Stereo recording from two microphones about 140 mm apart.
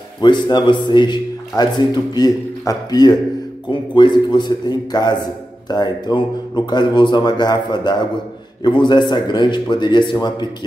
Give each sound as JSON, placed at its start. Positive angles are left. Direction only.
{"t": 0.2, "sound": "a man's voice", "side_deg": 30}